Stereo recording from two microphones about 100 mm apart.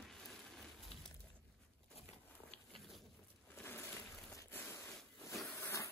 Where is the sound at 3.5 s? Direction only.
20° left (ahead or behind).